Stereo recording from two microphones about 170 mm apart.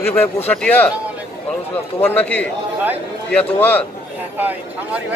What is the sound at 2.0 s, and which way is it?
A man's voice, 10° left (ahead or behind).